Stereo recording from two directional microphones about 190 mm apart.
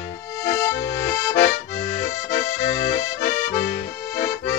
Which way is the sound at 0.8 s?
45° left (ahead or behind).